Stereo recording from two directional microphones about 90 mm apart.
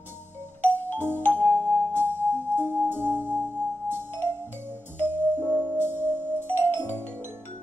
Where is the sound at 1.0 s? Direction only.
20° left (ahead or behind).